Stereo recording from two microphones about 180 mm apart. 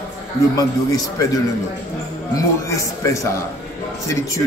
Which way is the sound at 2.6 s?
15° left (ahead or behind).